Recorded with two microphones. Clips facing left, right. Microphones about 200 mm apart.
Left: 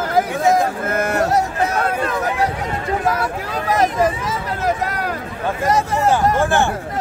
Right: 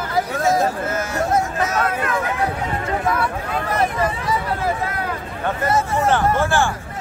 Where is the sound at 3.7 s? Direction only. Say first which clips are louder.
Left 5 dB; 85° left.